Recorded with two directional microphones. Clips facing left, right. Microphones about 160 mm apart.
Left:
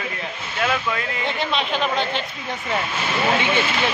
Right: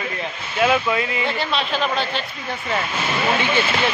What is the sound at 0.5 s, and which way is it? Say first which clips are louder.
Speech: right 5 dB; 10° right (ahead or behind).